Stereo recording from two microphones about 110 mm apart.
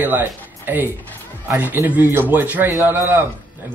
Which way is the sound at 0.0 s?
20° right (ahead or behind).